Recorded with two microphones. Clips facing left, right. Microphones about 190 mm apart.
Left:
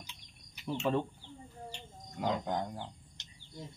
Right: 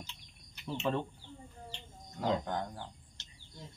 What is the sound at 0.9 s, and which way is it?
Speech, 5° left (ahead or behind).